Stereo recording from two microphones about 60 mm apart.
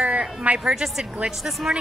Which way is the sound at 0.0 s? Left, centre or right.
Centre.